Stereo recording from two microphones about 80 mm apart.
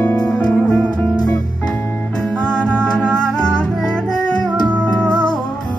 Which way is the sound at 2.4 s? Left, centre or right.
Centre.